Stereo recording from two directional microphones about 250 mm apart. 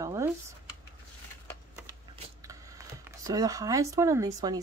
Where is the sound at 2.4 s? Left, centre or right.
Centre.